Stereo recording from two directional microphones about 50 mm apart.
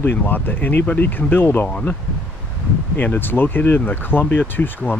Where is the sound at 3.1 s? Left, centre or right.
Left.